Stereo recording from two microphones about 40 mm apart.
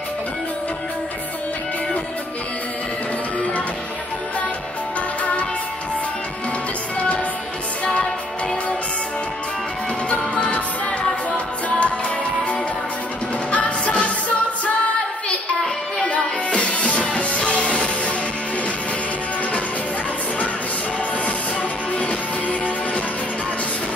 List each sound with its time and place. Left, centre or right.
5.2 s music: left
10.0 s music: left
13.5 s music: left
16.0 s music: left
21.9 s music: left